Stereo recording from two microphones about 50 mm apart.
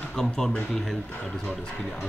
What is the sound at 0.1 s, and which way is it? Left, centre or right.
Speech, centre.